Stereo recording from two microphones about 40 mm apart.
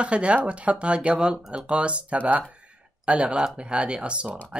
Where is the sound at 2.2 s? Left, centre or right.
Right.